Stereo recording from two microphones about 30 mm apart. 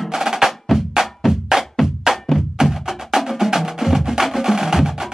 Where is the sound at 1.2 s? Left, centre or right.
Centre.